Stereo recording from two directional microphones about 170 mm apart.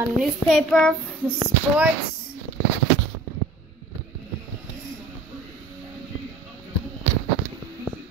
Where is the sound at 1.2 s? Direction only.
10° right (ahead or behind).